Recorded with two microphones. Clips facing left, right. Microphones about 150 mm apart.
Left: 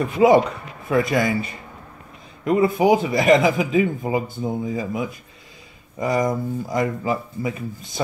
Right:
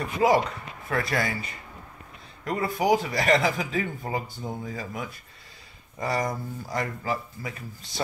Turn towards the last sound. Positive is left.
turn(degrees=20)  # may be behind; listen again after turning